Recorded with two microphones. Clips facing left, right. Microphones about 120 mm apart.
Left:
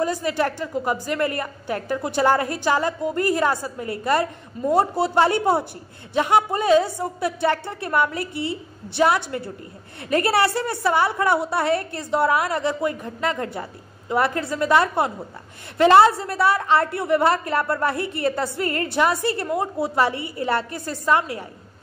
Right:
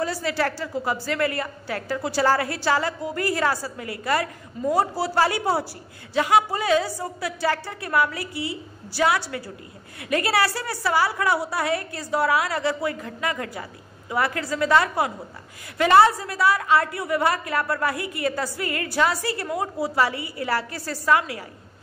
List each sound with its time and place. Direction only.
0.0 s a woman's voice: 20° left (ahead or behind)
3.7 s a woman's voice: 30° left (ahead or behind)
19.5 s a woman's voice: 5° right (ahead or behind)
20.0 s a woman's voice: 25° left (ahead or behind)